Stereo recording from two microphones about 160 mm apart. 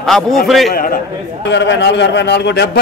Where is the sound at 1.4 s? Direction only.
90° left.